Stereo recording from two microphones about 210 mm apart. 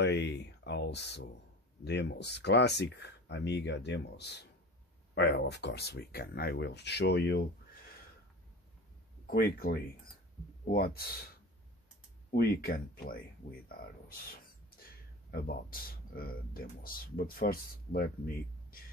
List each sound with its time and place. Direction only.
0.0 s speech: 55° left (ahead or behind)
9.2 s speech: 45° left (ahead or behind)
12.3 s speech: 45° left (ahead or behind)
15.3 s speech: 45° left (ahead or behind)